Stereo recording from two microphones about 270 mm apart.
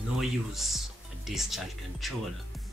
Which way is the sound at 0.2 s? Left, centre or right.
Centre.